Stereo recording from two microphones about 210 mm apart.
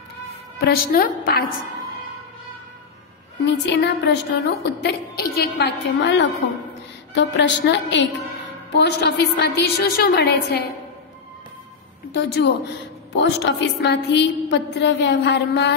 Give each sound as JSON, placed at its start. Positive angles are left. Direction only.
{"t": 0.6, "sound": "a woman's voice", "side_deg": 45}
{"t": 3.4, "sound": "a woman's voice", "side_deg": 55}
{"t": 12.2, "sound": "a woman's voice", "side_deg": 55}